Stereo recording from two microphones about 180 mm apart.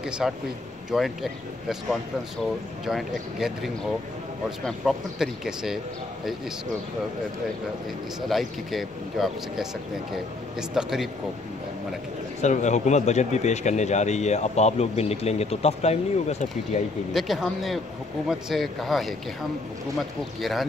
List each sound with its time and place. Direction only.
0.2 s speech: centre (ahead or behind)
8.3 s speech: centre (ahead or behind)
10.7 s speech: centre (ahead or behind)
12.4 s speech: 40° left (ahead or behind)
17.1 s speech: centre (ahead or behind)
20.3 s speech: centre (ahead or behind)